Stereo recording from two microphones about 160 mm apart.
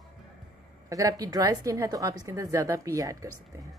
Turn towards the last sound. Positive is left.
turn(degrees=-20)  # may be behind; listen again after turning